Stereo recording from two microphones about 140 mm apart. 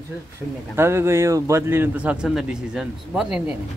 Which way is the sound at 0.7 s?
20° right (ahead or behind).